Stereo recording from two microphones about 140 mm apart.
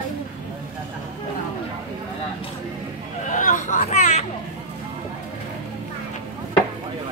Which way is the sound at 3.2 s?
65° left (ahead or behind).